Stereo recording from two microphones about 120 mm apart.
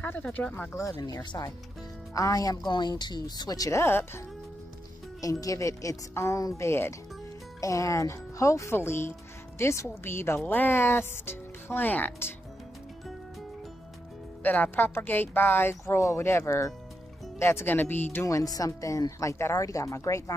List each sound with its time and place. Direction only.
0.0 s speech: 15° left (ahead or behind)
1.0 s speech: 35° left (ahead or behind)
5.2 s speech: 30° left (ahead or behind)
14.4 s speech: 15° left (ahead or behind)